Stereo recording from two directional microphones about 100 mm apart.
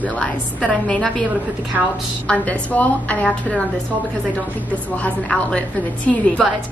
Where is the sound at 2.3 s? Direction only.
15° left (ahead or behind).